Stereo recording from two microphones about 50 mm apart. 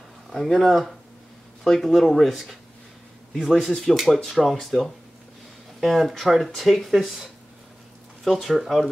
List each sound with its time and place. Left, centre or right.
0.3 s speech: centre